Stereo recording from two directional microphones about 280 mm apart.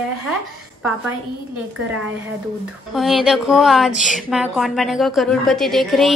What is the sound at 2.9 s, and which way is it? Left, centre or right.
Speech, centre.